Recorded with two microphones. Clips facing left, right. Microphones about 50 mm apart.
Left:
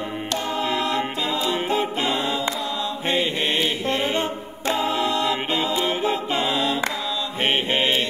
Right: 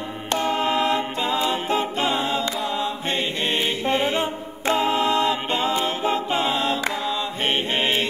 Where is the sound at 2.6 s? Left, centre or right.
Right.